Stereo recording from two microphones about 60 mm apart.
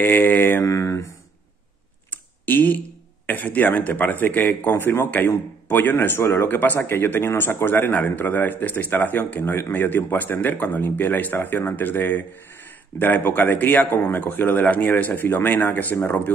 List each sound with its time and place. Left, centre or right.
0.0 s speech: left
0.7 s speech: left
2.0 s a sound: left
3.3 s speech: left